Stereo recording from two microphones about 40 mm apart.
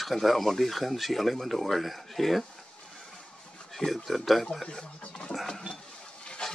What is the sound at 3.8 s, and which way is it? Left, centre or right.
Speech, centre.